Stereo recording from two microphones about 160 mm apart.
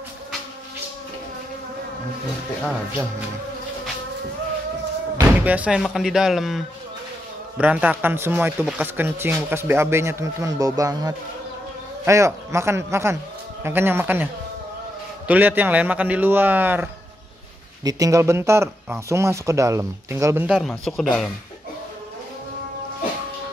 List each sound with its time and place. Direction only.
5.1 s a man's voice: 10° right (ahead or behind)
17.8 s speech: 20° right (ahead or behind)
20.4 s speech: centre (ahead or behind)